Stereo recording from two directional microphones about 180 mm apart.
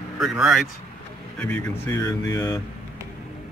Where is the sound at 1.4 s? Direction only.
10° left (ahead or behind).